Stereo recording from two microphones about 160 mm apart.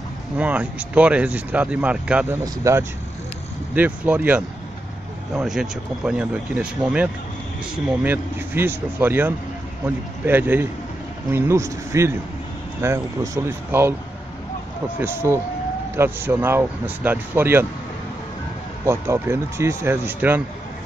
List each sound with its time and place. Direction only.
0.4 s speech: 10° right (ahead or behind)
2.4 s speech: 20° right (ahead or behind)
15.0 s speech: 15° right (ahead or behind)
18.9 s speech: 15° right (ahead or behind)